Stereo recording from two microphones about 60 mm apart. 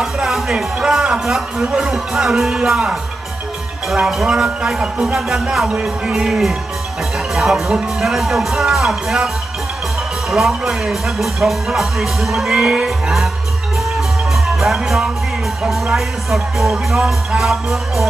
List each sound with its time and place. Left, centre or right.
0.0 s speech: centre
5.7 s speech: centre
6.2 s speech: centre
10.3 s speech: centre
13.9 s music: centre
15.6 s speech: centre